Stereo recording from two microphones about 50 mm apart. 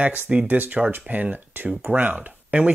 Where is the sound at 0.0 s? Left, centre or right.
Right.